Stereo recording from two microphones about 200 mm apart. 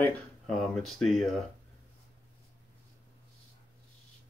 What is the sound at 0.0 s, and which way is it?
Speech, 5° left (ahead or behind).